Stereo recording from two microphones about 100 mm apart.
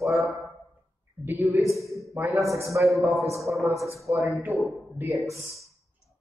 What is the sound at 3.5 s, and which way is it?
A man's voice, 25° right (ahead or behind).